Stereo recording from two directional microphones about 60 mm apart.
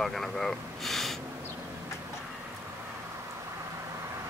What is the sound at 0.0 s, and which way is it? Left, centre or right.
Speech, centre.